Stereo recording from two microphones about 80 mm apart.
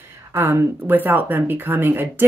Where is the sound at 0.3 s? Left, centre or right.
Right.